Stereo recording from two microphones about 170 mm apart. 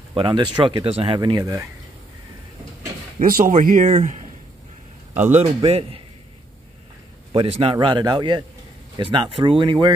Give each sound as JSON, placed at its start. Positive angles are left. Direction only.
{"t": 0.1, "sound": "speech", "side_deg": -30}
{"t": 3.2, "sound": "speech", "side_deg": -55}
{"t": 5.2, "sound": "a man's voice", "side_deg": -45}
{"t": 7.3, "sound": "a man's voice", "side_deg": -35}